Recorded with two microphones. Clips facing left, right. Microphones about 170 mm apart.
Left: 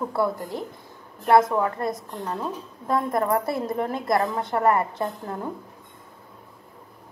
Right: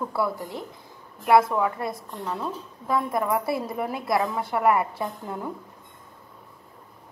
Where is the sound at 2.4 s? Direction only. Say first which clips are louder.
Left 1 dB; centre (ahead or behind).